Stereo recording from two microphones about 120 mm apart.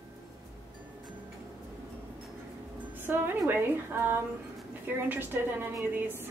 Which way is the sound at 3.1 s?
15° right (ahead or behind).